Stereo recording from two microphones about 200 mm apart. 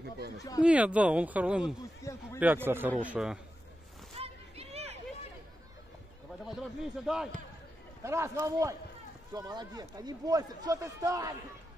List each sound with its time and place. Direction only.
0.6 s speech: 5° right (ahead or behind)
2.0 s a man's voice: 15° left (ahead or behind)
2.4 s a man's voice: 10° right (ahead or behind)
4.1 s a sound: 30° right (ahead or behind)
7.1 s a man's voice: 5° right (ahead or behind)
8.0 s speech: 15° right (ahead or behind)